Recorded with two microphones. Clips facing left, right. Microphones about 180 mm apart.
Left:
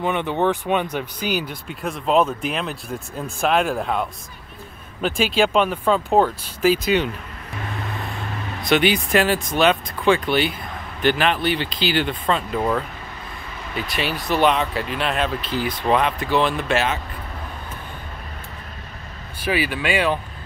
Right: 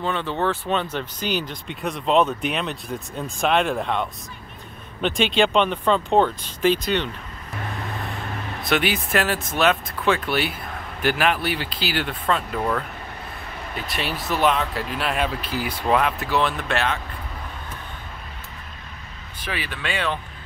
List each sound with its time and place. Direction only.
0.0 s speech: 15° left (ahead or behind)
8.6 s speech: centre (ahead or behind)
13.7 s speech: centre (ahead or behind)
19.4 s speech: 10° left (ahead or behind)